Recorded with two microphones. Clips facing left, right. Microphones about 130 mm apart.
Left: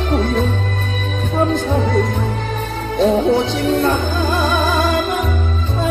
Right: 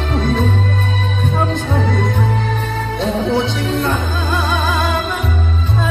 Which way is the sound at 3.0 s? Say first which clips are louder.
Left 4 dB; 40° left (ahead or behind).